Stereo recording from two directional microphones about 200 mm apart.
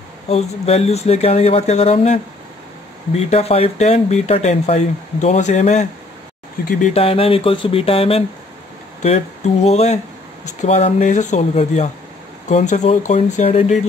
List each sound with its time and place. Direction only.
0.3 s speech: 30° left (ahead or behind)
3.2 s speech: 30° left (ahead or behind)
9.7 s speech: 35° left (ahead or behind)